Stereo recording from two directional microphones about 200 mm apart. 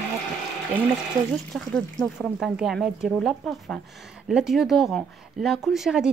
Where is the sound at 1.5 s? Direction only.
Centre (ahead or behind).